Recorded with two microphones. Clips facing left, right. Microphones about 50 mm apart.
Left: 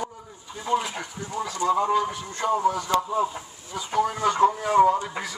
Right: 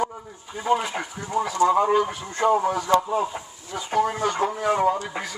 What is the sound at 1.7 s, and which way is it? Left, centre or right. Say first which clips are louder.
A man's voice: right 2 dB; right.